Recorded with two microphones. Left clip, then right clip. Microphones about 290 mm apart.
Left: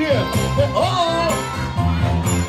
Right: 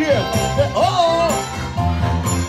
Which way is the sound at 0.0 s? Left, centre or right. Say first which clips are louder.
Right 2 dB; right.